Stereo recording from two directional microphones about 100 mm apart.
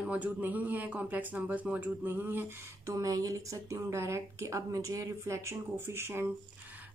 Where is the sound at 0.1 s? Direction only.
15° right (ahead or behind).